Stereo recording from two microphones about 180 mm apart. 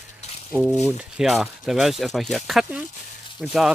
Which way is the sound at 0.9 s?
5° right (ahead or behind).